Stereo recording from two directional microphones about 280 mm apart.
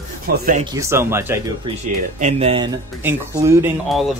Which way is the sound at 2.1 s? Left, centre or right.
Right.